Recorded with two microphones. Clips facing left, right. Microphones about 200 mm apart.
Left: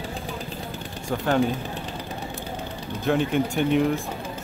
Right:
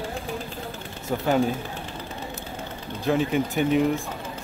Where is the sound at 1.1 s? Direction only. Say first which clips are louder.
Right 1 dB; 10° right (ahead or behind).